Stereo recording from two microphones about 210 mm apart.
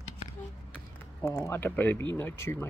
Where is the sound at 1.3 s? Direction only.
10° left (ahead or behind).